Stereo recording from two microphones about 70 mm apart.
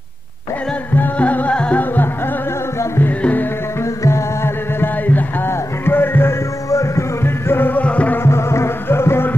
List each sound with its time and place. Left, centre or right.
0.9 s music: left
3.8 s music: left
6.7 s music: left
7.2 s music: left
8.2 s music: left